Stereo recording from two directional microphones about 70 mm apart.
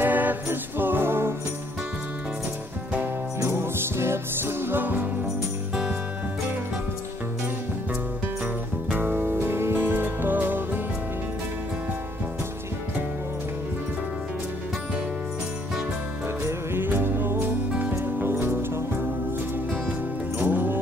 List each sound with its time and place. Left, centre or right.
0.0 s music: right
3.3 s music: right
8.9 s music: right
16.4 s music: right
19.7 s music: right